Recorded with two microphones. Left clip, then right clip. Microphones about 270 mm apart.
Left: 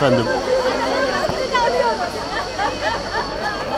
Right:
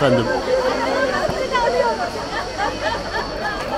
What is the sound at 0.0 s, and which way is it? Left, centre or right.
Chatter, centre.